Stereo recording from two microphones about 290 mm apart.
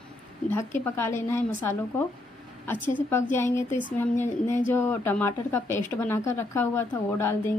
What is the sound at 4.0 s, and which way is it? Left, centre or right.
A woman's voice, centre.